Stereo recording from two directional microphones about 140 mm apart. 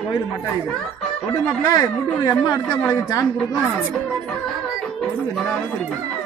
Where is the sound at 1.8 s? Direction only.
25° left (ahead or behind).